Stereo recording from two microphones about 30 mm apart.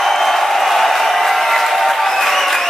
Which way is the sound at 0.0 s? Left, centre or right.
Centre.